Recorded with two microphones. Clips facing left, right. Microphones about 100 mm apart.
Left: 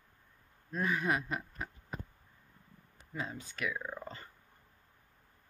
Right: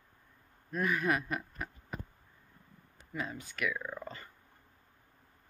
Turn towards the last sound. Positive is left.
turn(degrees=20)  # may be behind; listen again after turning